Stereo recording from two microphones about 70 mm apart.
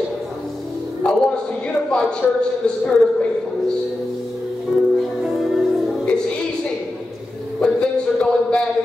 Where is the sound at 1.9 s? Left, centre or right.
Centre.